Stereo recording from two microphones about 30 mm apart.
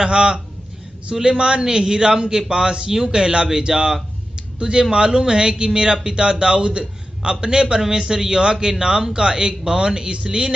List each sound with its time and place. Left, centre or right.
0.0 s a man's voice: right
2.6 s a man's voice: right